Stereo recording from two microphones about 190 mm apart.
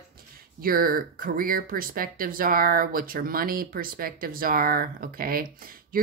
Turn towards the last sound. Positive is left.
turn(degrees=-50)  # may be behind; listen again after turning